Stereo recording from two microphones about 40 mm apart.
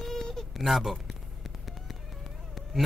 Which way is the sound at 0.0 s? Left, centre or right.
Centre.